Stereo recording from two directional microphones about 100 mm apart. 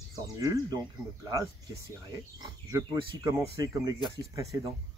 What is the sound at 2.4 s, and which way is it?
Speech, 40° right (ahead or behind).